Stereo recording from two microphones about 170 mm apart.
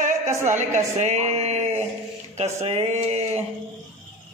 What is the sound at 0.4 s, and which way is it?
A woman's voice, 45° right (ahead or behind).